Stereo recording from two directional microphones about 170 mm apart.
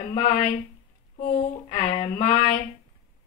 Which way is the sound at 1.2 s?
45° left (ahead or behind).